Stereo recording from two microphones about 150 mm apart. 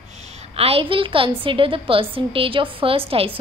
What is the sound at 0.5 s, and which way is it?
A woman's voice, 40° right (ahead or behind).